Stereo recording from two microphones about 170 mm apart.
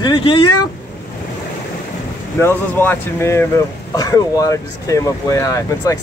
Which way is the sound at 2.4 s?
15° left (ahead or behind).